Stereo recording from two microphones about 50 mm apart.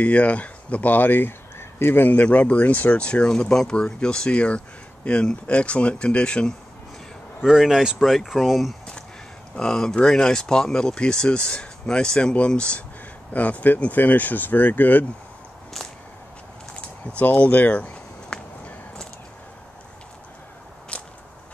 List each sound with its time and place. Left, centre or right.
0.0 s speech: left
2.0 s speech: left
7.4 s speech: centre
9.6 s speech: centre; by 15.0 s left
17.2 s speech: left
18.3 s a sound: centre
20.9 s biting: left